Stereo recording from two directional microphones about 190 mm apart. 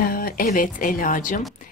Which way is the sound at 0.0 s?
50° left (ahead or behind).